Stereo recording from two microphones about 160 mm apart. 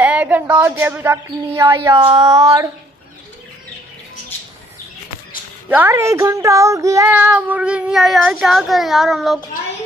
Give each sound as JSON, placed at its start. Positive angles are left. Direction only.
{"t": 0.0, "sound": "child singing", "side_deg": -10}
{"t": 2.0, "sound": "a sound", "side_deg": -35}
{"t": 5.7, "sound": "child singing", "side_deg": -10}